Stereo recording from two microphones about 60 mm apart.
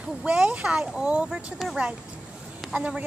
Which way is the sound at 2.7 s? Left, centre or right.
Centre.